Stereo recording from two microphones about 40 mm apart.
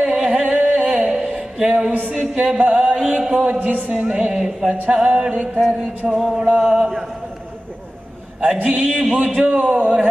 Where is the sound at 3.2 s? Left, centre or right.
Right.